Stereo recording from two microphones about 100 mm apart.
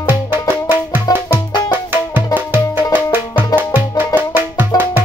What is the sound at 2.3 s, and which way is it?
Music, 20° right (ahead or behind).